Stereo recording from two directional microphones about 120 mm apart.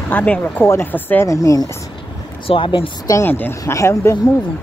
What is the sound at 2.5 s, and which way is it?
Speech, 50° left (ahead or behind).